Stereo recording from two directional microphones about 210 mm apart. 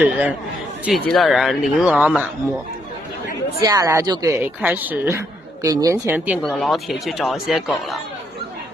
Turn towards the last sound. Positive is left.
turn(degrees=0)  # may be behind; listen again after turning